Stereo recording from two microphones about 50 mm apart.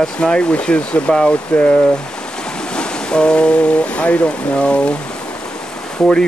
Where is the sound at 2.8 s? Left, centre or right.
Centre.